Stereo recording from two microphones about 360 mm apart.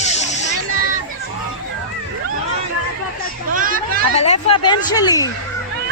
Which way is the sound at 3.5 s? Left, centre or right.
Right.